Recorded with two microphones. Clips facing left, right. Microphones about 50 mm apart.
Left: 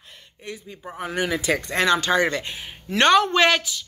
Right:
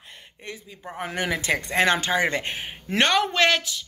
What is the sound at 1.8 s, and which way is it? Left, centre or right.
Speech, right.